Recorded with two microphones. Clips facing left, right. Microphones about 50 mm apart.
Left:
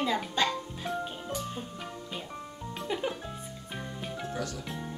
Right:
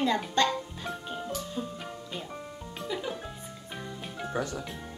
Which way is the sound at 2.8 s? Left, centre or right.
Left.